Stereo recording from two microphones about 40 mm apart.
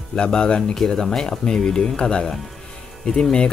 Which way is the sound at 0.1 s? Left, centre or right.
Left.